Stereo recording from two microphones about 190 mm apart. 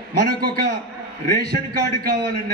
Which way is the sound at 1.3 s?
55° right (ahead or behind).